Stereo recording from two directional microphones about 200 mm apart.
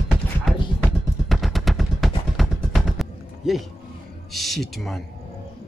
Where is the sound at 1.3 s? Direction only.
Centre (ahead or behind).